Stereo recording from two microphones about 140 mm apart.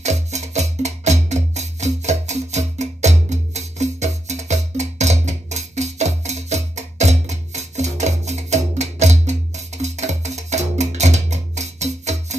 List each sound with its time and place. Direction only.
0.0 s music: 55° right (ahead or behind)